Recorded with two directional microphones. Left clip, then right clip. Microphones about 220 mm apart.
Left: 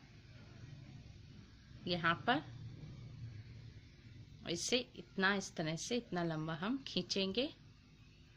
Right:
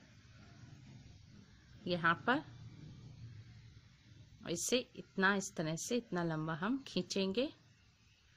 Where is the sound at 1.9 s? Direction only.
20° right (ahead or behind).